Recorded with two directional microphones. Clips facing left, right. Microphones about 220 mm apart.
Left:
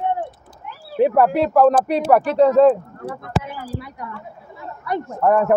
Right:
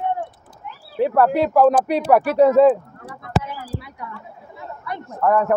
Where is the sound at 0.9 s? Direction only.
15° left (ahead or behind).